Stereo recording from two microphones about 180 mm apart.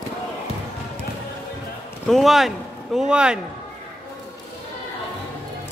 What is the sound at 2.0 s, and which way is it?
Speech, centre (ahead or behind).